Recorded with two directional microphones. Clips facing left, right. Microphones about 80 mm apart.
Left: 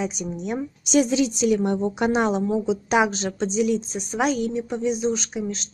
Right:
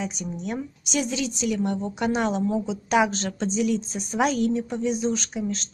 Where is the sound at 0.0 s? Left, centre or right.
Centre.